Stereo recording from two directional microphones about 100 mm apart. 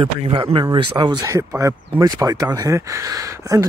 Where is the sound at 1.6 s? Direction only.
30° right (ahead or behind).